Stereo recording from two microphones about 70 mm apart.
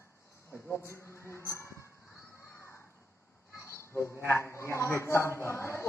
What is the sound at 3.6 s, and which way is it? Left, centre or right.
A man's voice, left.